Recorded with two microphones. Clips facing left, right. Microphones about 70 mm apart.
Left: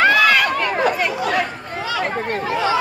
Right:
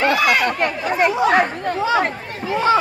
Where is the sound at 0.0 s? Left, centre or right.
Left.